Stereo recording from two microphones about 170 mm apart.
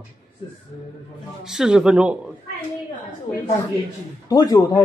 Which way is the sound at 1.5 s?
Centre (ahead or behind).